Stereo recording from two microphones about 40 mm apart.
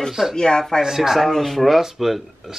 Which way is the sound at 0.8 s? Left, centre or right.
Centre.